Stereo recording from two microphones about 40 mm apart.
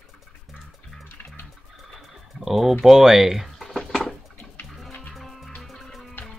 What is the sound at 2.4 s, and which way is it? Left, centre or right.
Speech, centre.